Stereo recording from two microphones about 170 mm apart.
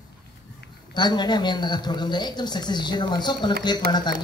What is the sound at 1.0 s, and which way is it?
Speech, 25° left (ahead or behind).